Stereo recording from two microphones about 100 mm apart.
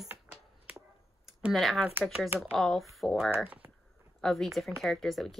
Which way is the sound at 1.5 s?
Centre (ahead or behind).